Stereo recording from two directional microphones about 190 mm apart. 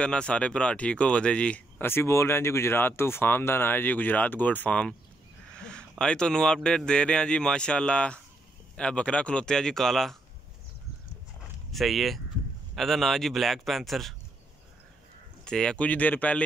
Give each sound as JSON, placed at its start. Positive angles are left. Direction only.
{"t": 0.0, "sound": "speech", "side_deg": 5}
{"t": 11.7, "sound": "speech", "side_deg": 0}
{"t": 15.4, "sound": "speech", "side_deg": 5}